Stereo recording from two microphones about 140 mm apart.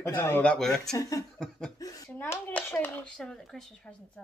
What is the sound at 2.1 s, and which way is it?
Speech, 15° left (ahead or behind).